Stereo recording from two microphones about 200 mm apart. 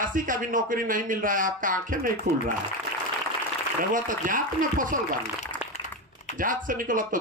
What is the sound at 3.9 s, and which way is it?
Speech, 40° right (ahead or behind).